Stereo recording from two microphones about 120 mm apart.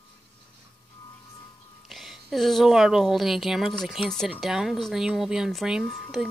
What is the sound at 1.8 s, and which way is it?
A woman's voice, centre (ahead or behind).